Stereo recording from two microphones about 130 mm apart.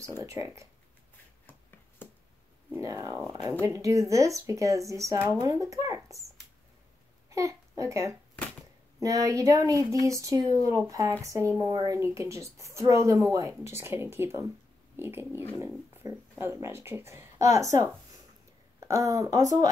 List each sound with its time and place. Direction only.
0.2 s speech: 25° right (ahead or behind)
2.0 s a sound: 15° left (ahead or behind)
2.7 s speech: 25° right (ahead or behind)
7.2 s a child's voice: 25° right (ahead or behind)